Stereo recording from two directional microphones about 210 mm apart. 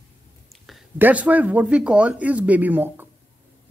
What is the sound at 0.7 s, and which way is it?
Speech, 5° right (ahead or behind).